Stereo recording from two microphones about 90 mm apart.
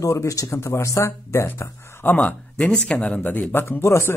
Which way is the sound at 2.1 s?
15° left (ahead or behind).